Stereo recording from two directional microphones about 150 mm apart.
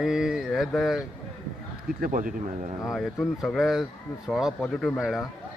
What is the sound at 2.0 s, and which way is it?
Speech, 65° right (ahead or behind).